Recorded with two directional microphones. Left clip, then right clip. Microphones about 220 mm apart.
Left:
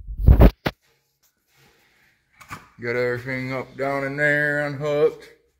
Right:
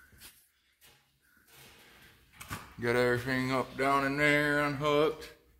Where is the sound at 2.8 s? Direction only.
5° left (ahead or behind); by 5.3 s 30° left (ahead or behind).